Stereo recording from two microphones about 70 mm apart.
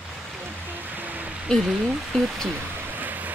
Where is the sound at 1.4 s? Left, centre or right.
Centre.